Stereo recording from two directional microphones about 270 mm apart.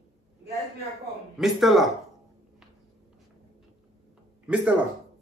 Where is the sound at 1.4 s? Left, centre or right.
Centre.